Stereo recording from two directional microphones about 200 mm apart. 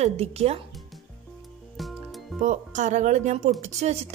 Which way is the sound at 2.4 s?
35° right (ahead or behind).